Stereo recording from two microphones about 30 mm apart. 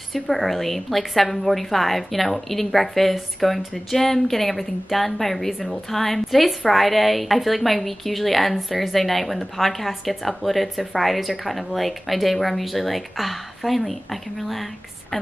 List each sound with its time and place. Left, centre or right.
0.1 s a woman's voice: centre